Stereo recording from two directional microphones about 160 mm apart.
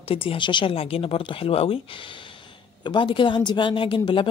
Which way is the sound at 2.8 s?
30° left (ahead or behind).